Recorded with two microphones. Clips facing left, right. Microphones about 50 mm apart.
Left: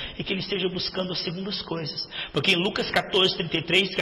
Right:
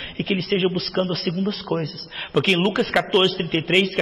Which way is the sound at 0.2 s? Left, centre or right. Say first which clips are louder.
Right 7 dB; right.